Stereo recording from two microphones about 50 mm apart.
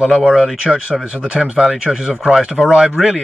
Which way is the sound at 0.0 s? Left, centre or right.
Centre.